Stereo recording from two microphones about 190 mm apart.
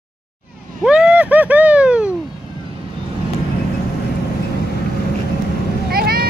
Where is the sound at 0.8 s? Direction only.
5° right (ahead or behind).